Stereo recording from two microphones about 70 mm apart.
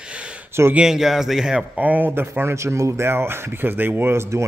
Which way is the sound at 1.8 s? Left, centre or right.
Right.